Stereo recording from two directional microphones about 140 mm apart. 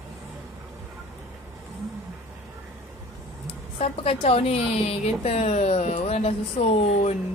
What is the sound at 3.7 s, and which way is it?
A woman's voice, 50° left (ahead or behind).